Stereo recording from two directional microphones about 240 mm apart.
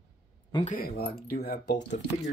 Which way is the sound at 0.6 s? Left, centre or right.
Left.